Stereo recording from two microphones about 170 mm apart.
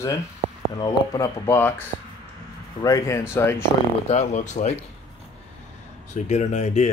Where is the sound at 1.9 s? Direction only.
40° right (ahead or behind).